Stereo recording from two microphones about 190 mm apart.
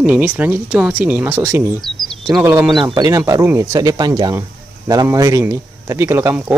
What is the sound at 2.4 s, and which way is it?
Speech, 10° right (ahead or behind).